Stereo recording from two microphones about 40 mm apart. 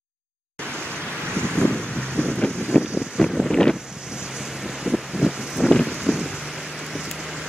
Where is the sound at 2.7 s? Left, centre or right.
Left.